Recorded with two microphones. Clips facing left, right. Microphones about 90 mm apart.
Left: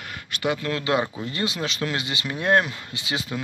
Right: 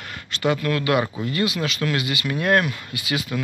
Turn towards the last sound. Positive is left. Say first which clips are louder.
# right 3 dB
turn(degrees=30)  # may be behind; listen again after turning